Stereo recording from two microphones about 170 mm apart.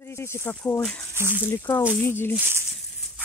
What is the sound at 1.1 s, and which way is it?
Speech, 15° right (ahead or behind).